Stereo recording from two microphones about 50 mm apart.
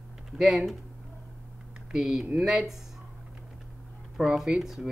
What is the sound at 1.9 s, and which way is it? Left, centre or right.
Speech, centre.